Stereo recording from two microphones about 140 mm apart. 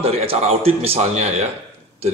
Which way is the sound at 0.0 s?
45° right (ahead or behind).